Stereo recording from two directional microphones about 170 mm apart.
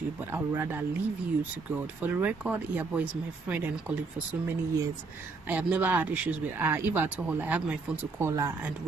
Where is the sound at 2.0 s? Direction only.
10° right (ahead or behind).